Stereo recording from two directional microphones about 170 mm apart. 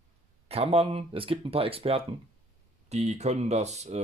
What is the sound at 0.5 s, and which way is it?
Speech, 35° right (ahead or behind).